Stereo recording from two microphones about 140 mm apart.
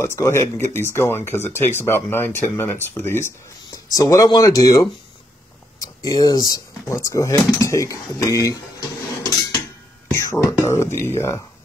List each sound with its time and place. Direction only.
0.0 s speech: 20° left (ahead or behind)
10.1 s speech: 20° left (ahead or behind)